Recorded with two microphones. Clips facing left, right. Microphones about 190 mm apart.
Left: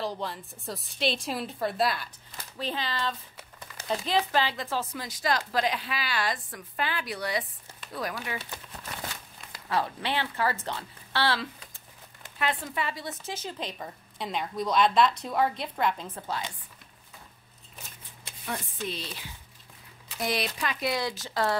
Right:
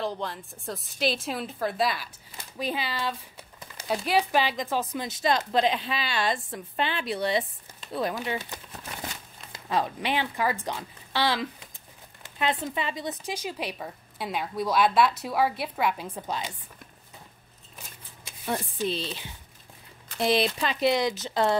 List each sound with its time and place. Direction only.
0.0 s a woman's voice: centre (ahead or behind)
2.3 s speech: 10° right (ahead or behind)
9.5 s speech: 20° right (ahead or behind)
20.2 s speech: 25° right (ahead or behind)